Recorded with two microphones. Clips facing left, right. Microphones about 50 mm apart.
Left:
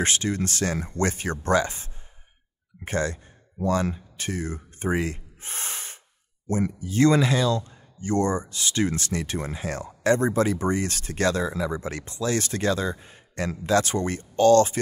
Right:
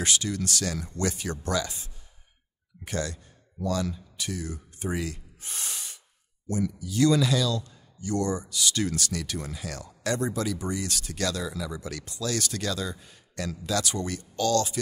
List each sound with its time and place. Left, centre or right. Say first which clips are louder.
0.0 s a man's voice: left 4 dB; left